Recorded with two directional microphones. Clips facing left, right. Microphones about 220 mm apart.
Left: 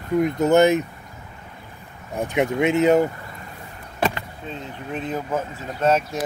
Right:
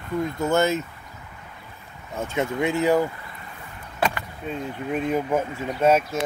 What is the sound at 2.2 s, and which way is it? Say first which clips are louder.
Speech: left 4 dB; 15° left (ahead or behind).